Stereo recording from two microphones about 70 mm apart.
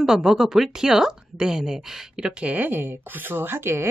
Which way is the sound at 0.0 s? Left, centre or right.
Centre.